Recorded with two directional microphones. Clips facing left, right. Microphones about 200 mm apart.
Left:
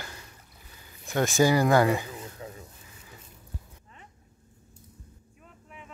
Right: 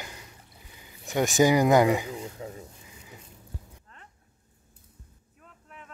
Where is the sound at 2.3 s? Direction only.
25° right (ahead or behind).